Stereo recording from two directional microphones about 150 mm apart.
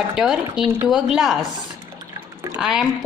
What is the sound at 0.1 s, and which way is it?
A woman's voice, 5° right (ahead or behind).